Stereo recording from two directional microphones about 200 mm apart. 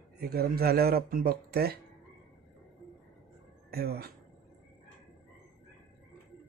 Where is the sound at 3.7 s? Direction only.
50° right (ahead or behind).